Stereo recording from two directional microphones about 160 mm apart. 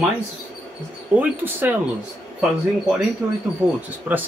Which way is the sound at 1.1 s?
10° right (ahead or behind).